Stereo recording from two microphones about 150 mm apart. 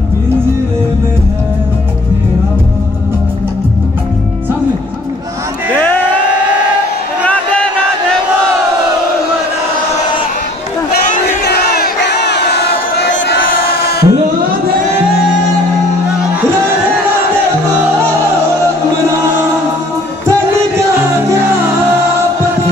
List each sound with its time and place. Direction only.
5.7 s crowd: 15° left (ahead or behind)
10.9 s crowd: 90° left
13.7 s music: 90° left